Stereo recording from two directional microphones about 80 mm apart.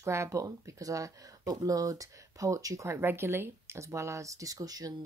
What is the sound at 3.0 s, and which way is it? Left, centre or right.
Speech, right.